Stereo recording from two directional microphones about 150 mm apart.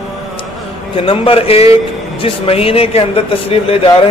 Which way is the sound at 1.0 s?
35° left (ahead or behind).